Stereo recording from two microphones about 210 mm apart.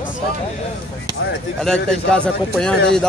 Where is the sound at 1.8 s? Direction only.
5° left (ahead or behind).